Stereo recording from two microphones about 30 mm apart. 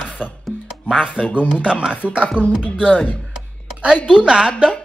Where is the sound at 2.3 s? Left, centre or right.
Left.